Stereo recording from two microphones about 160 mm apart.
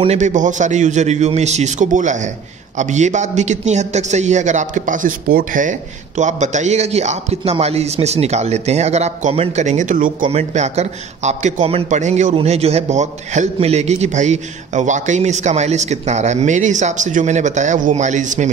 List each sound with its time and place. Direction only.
0.0 s a man's voice: 45° right (ahead or behind)
10.2 s a man's voice: 45° right (ahead or behind)